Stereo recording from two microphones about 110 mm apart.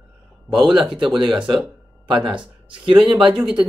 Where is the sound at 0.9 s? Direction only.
45° right (ahead or behind).